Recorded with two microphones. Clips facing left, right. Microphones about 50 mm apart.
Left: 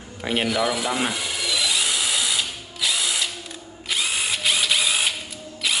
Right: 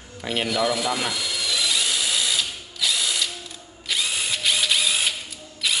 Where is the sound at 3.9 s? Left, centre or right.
Centre.